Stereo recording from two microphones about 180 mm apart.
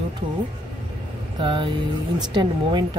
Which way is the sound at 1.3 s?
25° right (ahead or behind).